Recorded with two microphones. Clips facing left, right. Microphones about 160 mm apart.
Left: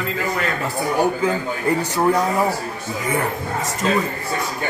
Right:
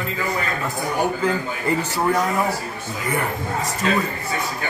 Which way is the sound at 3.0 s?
20° left (ahead or behind).